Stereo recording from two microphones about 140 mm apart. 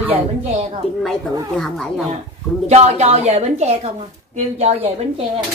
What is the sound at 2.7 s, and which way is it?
A woman's voice, 50° right (ahead or behind).